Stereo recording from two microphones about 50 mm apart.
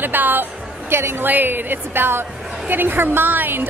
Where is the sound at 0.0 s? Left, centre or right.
Right.